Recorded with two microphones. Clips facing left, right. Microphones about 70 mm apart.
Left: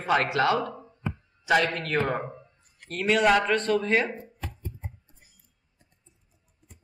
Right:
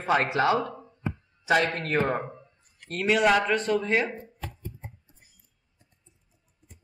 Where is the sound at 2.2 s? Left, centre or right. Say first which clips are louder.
Left 2 dB; centre.